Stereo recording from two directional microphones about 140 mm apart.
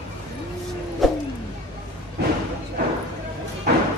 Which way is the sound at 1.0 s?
Centre (ahead or behind).